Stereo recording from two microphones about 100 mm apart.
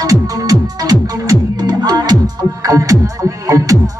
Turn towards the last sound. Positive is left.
turn(degrees=-35)  # may be behind; listen again after turning